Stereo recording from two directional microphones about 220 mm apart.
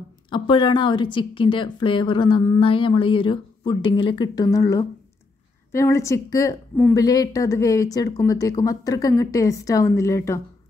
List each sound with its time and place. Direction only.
0.3 s speech: 20° left (ahead or behind)